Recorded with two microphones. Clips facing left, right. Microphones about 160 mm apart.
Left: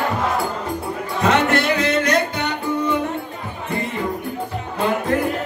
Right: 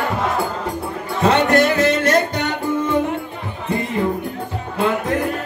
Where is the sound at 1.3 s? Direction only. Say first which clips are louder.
Right 3 dB; 40° right (ahead or behind).